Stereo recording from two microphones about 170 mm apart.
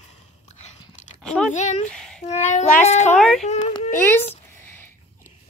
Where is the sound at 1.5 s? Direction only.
45° left (ahead or behind).